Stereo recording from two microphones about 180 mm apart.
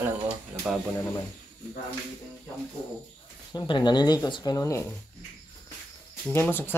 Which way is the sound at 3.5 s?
25° left (ahead or behind).